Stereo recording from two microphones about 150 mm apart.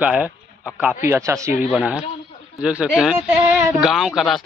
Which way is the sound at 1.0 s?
20° right (ahead or behind).